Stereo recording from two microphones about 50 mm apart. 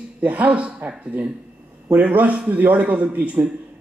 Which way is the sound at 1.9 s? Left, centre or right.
Right.